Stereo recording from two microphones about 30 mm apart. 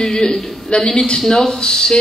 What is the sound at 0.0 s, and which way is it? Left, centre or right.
Speech, left.